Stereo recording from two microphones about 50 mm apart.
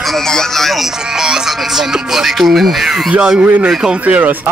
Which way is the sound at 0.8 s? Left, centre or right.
Centre.